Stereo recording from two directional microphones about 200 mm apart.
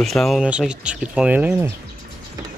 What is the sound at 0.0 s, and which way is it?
Speech, centre (ahead or behind).